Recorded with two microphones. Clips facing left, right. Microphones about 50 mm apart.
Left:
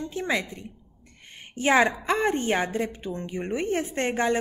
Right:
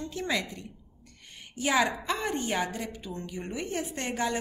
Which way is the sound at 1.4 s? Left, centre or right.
Left.